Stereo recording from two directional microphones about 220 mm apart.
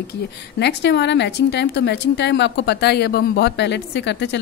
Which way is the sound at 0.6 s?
50° left (ahead or behind).